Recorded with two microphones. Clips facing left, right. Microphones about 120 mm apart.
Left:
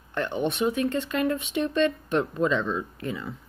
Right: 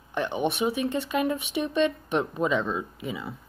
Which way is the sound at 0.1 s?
15° right (ahead or behind).